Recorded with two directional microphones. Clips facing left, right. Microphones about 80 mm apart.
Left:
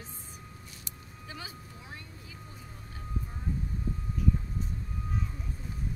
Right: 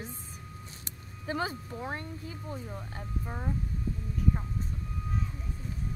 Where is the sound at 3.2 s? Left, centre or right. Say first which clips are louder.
Right 6 dB; right.